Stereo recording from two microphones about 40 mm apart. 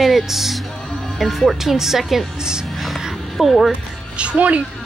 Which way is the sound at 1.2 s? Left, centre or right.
Centre.